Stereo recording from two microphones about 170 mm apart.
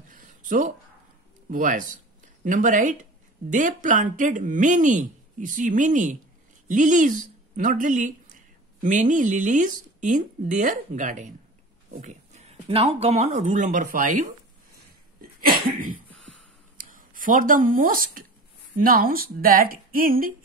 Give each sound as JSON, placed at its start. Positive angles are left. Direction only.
{"t": 0.1, "sound": "a sound", "side_deg": -50}
{"t": 1.5, "sound": "speech", "side_deg": -50}
{"t": 16.7, "sound": "speech", "side_deg": -55}